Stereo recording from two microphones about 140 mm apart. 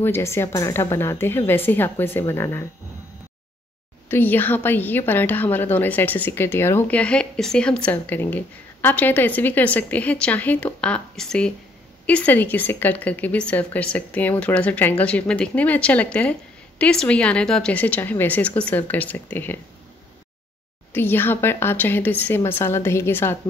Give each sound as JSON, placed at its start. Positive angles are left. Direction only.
{"t": 0.0, "sound": "a woman's voice", "side_deg": 20}
{"t": 4.1, "sound": "a woman's voice", "side_deg": 15}
{"t": 20.9, "sound": "a woman's voice", "side_deg": 15}